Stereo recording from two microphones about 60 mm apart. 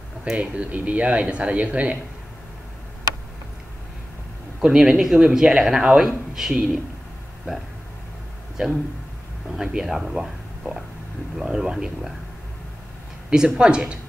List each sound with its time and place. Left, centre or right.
0.3 s speech: centre
4.6 s speech: centre
9.6 s speech: centre
13.3 s speech: centre